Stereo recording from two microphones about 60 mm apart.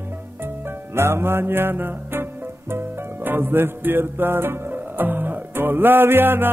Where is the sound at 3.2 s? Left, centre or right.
Right.